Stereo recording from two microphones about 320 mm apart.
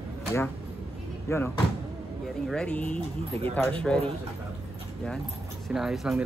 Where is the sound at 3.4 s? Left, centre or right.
Centre.